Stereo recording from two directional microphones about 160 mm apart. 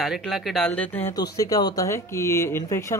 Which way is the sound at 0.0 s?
Centre (ahead or behind).